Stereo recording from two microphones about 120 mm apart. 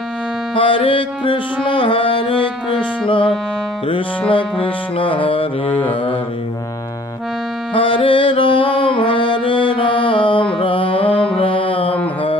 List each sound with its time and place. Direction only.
0.6 s music: 45° left (ahead or behind)
7.7 s music: 45° left (ahead or behind)